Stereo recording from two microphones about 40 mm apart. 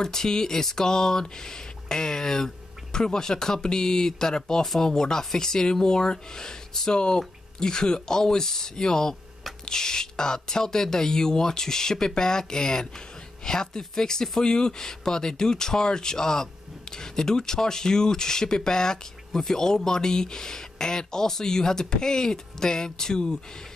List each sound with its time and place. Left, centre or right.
0.0 s speech: centre